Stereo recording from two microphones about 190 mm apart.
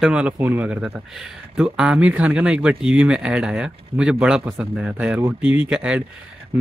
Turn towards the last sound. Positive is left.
turn(degrees=-5)  # may be behind; listen again after turning